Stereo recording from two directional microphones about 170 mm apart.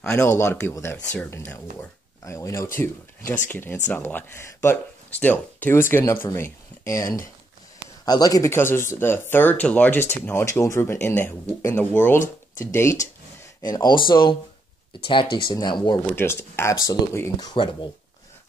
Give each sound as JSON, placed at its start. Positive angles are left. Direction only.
{"t": 0.1, "sound": "speech", "side_deg": 15}
{"t": 15.3, "sound": "speech", "side_deg": 25}
{"t": 16.1, "sound": "speech", "side_deg": 15}